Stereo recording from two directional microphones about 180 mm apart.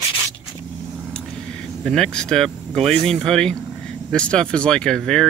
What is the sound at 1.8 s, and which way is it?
Speech, 5° left (ahead or behind).